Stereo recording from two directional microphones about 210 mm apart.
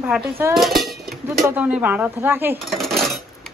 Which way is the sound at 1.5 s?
5° right (ahead or behind).